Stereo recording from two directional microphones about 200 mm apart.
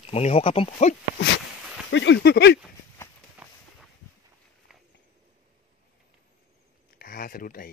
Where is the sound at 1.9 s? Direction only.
65° left (ahead or behind).